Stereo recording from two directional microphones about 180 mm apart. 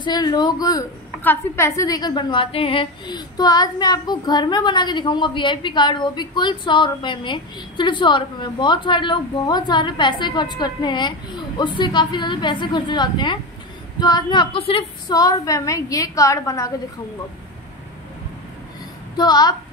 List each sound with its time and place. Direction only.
0.0 s a woman's voice: 25° left (ahead or behind)
19.1 s a woman's voice: 20° left (ahead or behind)